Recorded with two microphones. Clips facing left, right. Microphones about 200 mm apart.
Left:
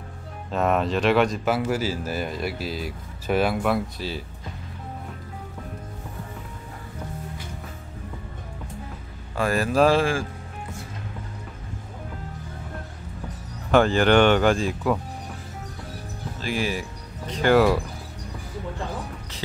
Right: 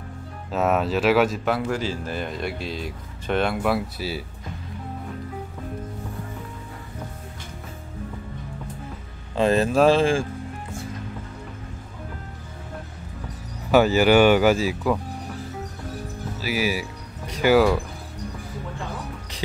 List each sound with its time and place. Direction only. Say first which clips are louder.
0.5 s speech: right 1 dB; 5° right (ahead or behind)
9.3 s speech: right 4 dB; 20° right (ahead or behind)
13.7 s speech: right 1 dB; 5° right (ahead or behind)
16.3 s speech: right 2 dB; 5° right (ahead or behind)